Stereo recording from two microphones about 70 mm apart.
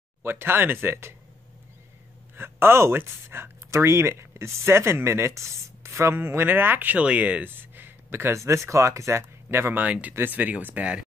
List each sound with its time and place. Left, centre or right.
0.2 s speech: right
2.3 s speech: right
6.1 s speech: right
8.4 s speech: right
9.2 s speech: right